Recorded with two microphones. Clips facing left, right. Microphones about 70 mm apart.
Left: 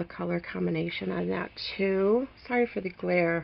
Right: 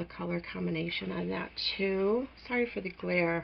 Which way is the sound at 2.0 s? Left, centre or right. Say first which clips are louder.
Left 5 dB; centre.